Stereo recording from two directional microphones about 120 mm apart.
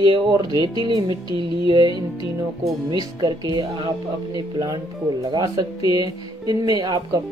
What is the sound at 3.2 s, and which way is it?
Speech, 35° right (ahead or behind).